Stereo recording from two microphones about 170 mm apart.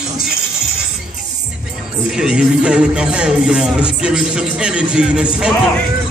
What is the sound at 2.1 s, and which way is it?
Speech, 5° right (ahead or behind).